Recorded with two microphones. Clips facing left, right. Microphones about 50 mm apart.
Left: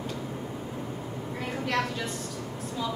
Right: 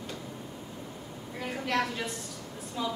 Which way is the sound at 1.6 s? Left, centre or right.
Centre.